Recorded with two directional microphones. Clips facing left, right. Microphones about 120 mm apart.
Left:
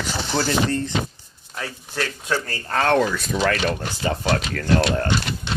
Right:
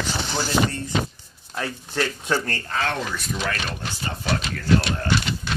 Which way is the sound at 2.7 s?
55° left (ahead or behind).